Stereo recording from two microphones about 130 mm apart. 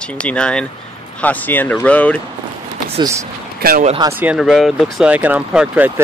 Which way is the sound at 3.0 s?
25° right (ahead or behind).